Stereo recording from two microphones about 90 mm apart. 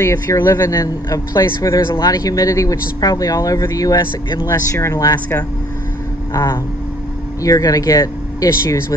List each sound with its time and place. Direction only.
0.0 s speech: 35° left (ahead or behind)
4.0 s speech: 60° left (ahead or behind)
4.9 s speech: 40° left (ahead or behind)